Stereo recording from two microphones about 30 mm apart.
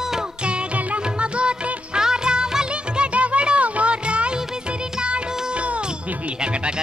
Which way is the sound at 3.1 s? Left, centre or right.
Right.